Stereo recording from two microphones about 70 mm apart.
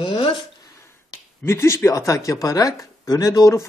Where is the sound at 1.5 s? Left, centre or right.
Left.